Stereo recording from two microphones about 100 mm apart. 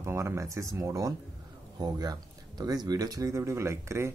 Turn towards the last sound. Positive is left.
turn(degrees=-25)  # may be behind; listen again after turning